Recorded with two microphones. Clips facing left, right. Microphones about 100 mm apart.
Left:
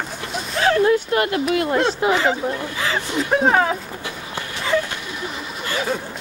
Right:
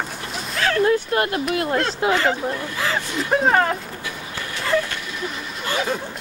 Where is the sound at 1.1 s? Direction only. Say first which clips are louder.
Left 2 dB; 30° right (ahead or behind).